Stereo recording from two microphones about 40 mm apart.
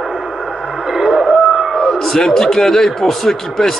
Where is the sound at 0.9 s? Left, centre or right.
Centre.